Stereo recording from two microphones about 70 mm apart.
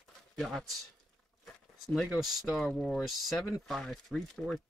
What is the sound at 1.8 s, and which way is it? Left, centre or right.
Speech, centre.